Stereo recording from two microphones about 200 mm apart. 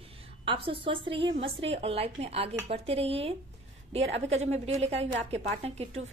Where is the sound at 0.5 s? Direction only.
25° right (ahead or behind).